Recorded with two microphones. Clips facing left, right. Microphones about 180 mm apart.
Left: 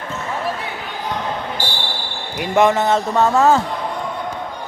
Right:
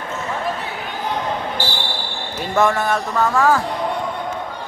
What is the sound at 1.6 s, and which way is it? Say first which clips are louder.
Basketball bounce: right 1 dB; 10° left (ahead or behind).